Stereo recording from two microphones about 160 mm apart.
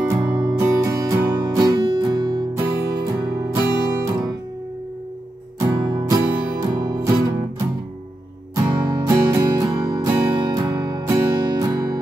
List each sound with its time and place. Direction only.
0.1 s music: 15° right (ahead or behind)
5.6 s music: 25° right (ahead or behind)